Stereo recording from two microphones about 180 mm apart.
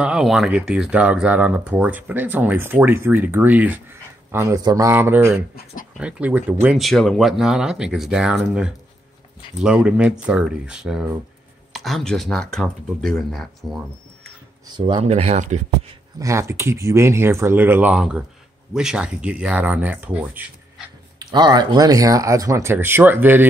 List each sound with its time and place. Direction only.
0.0 s speech: 5° right (ahead or behind)
9.6 s speech: 5° right (ahead or behind)
14.7 s speech: 25° right (ahead or behind); by 15.6 s 40° right (ahead or behind)
16.2 s speech: 15° right (ahead or behind)
21.2 s speech: 25° right (ahead or behind)